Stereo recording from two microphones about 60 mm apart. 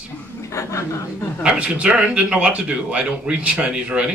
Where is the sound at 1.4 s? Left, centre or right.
Centre.